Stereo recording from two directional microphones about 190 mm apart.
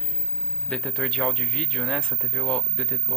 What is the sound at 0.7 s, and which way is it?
Speech, 5° left (ahead or behind).